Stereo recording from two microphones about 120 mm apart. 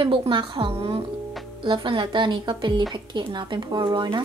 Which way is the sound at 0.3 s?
45° right (ahead or behind).